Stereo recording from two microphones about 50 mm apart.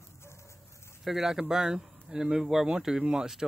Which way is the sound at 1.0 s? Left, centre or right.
Centre.